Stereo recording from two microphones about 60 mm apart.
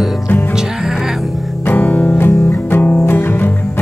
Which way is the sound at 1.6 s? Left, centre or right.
Left.